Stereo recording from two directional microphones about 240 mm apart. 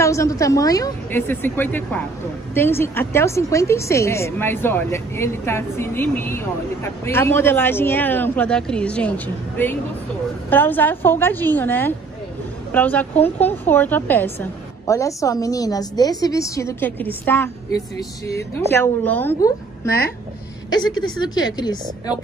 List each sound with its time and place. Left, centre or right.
0.0 s a woman's voice: centre
21.2 s a woman's voice: centre